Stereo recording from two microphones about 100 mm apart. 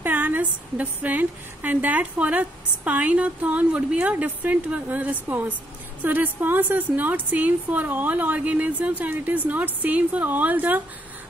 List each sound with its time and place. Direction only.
0.0 s a woman's voice: 20° right (ahead or behind)